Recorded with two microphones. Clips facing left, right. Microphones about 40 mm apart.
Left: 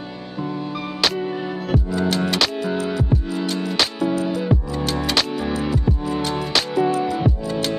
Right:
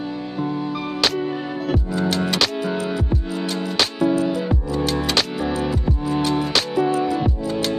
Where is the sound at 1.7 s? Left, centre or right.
Centre.